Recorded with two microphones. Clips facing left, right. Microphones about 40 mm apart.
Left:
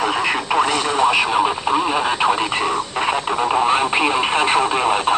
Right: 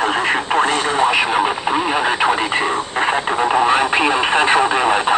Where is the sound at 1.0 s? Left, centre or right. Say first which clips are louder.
Even; centre.